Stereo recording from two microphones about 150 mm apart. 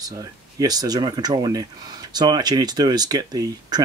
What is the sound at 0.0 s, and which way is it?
Speech, 25° right (ahead or behind).